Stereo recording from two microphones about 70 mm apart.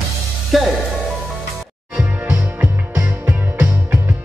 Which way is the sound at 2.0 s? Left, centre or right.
Centre.